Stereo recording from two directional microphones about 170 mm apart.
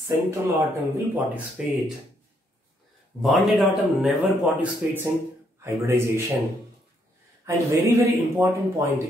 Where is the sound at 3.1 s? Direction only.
Centre (ahead or behind); by 6.2 s 15° right (ahead or behind).